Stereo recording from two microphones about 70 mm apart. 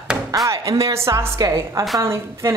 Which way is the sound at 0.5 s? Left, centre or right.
Right.